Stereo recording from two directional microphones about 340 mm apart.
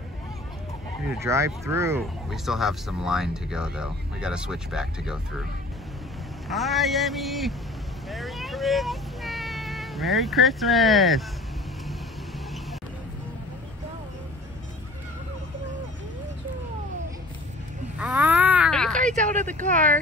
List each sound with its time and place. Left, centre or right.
1.0 s speech: centre
6.5 s speech: centre
17.9 s a sound: centre
18.9 s speech: right